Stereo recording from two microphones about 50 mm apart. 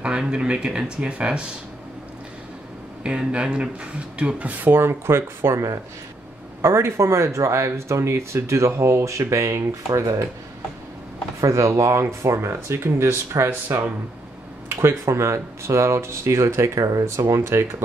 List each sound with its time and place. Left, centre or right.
0.0 s speech: centre
3.0 s speech: right
11.4 s speech: right
13.5 s speech: right
14.8 s speech: right